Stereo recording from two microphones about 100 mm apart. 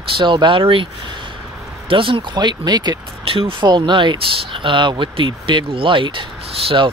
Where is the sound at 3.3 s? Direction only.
65° right (ahead or behind).